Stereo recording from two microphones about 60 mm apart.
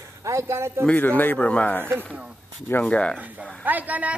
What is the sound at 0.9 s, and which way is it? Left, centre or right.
Speech, left.